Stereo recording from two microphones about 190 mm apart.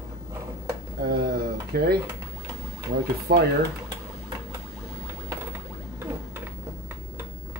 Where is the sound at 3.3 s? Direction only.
55° right (ahead or behind).